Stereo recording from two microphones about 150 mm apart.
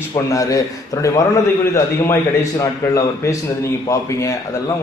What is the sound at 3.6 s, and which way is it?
Speech, 20° left (ahead or behind).